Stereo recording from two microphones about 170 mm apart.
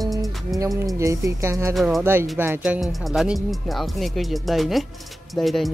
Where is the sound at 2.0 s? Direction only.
15° right (ahead or behind).